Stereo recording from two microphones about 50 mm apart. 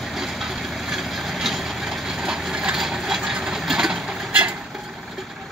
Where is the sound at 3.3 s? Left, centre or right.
Centre.